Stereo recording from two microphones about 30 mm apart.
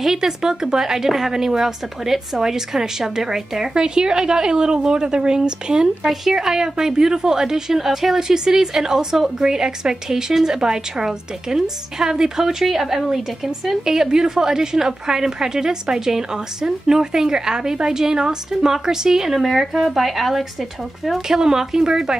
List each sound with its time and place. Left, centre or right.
0.0 s a woman's voice: centre
6.0 s a woman's voice: centre
8.2 s a woman's voice: centre
19.4 s speech: centre
21.4 s a woman's voice: right